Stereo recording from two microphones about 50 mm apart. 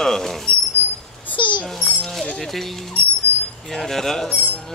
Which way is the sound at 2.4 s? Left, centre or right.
Centre.